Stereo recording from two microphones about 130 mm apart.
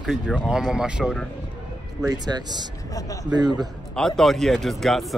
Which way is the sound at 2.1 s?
30° right (ahead or behind).